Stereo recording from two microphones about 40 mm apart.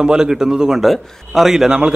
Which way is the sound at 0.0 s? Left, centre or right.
Centre.